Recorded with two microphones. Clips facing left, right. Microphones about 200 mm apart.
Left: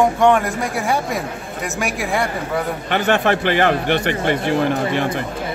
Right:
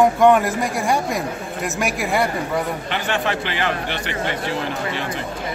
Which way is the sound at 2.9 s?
55° left (ahead or behind).